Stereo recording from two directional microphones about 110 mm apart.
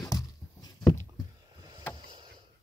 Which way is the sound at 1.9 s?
45° right (ahead or behind).